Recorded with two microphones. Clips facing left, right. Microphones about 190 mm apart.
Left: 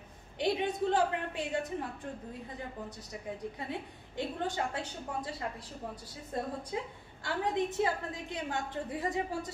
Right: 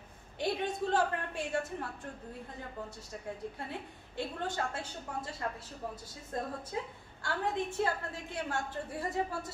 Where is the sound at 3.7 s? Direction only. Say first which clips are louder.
Left 3 dB; 15° left (ahead or behind).